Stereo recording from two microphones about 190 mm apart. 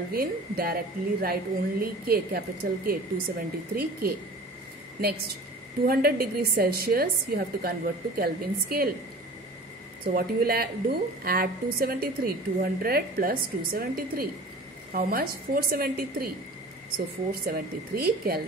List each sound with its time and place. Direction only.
0.1 s a woman's voice: 50° right (ahead or behind)
5.9 s a woman's voice: 55° right (ahead or behind)
10.1 s a woman's voice: 55° right (ahead or behind)
17.3 s a woman's voice: 55° right (ahead or behind)